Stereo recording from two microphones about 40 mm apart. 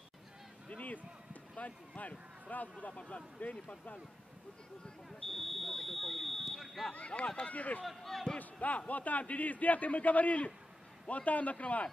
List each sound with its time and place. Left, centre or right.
0.7 s a sound: left
1.6 s speech: left
2.9 s speech: left
3.3 s speech: left
5.3 s smoke detector: centre
6.9 s speech: left
7.5 s speech: left
7.8 s speech: centre
8.4 s speech: left